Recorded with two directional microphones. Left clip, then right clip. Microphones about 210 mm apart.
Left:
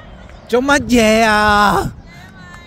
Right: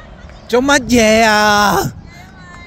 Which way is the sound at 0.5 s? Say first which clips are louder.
Right 1 dB; centre (ahead or behind).